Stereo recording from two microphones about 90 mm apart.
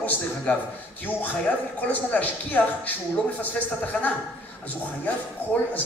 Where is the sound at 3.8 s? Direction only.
20° left (ahead or behind).